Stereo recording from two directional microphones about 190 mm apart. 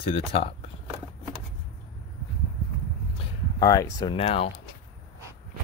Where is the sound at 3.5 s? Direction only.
15° left (ahead or behind).